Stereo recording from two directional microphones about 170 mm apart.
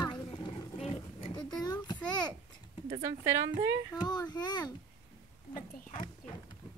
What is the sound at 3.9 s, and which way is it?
Speech, 25° left (ahead or behind).